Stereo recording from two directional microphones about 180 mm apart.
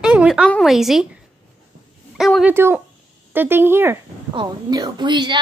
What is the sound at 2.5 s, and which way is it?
Speech, 10° right (ahead or behind).